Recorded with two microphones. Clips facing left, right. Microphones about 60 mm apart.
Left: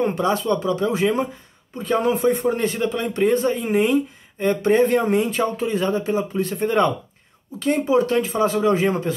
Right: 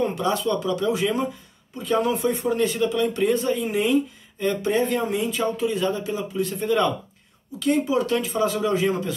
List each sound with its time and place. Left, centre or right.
0.0 s speech: left